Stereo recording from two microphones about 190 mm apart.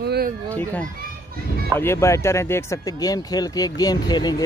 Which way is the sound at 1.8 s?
15° left (ahead or behind).